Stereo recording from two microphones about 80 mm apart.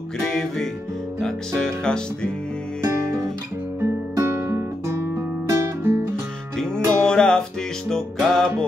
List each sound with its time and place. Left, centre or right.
0.2 s music: centre
4.1 s guitar: right
6.6 s music: centre